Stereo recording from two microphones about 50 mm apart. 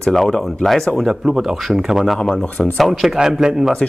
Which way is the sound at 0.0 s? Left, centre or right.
Centre.